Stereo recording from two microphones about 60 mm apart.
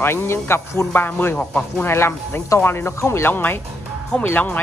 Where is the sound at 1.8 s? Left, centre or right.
Left.